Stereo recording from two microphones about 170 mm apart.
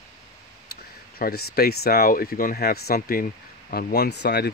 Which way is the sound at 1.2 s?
65° left (ahead or behind).